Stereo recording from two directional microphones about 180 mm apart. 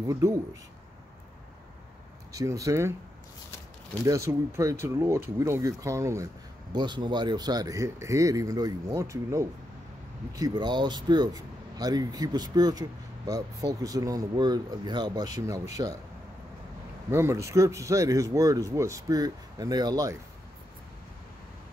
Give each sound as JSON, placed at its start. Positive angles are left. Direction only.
{"t": 0.0, "sound": "speech", "side_deg": -20}
{"t": 2.3, "sound": "speech", "side_deg": -20}
{"t": 4.0, "sound": "speech", "side_deg": -15}
{"t": 17.1, "sound": "speech", "side_deg": -15}